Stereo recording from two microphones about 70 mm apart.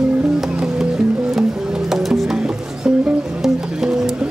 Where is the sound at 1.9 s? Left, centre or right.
Centre.